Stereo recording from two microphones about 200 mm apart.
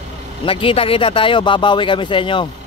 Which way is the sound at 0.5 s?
25° left (ahead or behind).